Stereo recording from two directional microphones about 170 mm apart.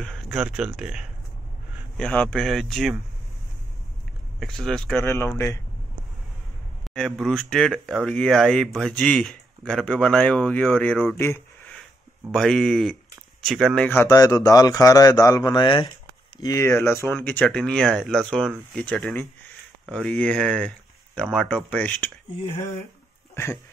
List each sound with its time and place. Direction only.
0.0 s speech: 5° left (ahead or behind)
4.4 s speech: centre (ahead or behind)
5.1 s speech: 15° left (ahead or behind)
6.9 s speech: centre (ahead or behind)
12.3 s speech: 5° left (ahead or behind)
13.8 s a man's voice: 15° left (ahead or behind)
23.3 s speech: 15° left (ahead or behind)